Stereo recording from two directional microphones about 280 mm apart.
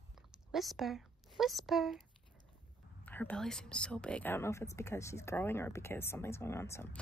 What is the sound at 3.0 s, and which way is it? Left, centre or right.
A woman's voice, centre.